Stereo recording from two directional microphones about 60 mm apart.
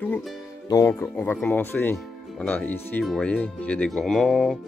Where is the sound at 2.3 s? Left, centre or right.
Left.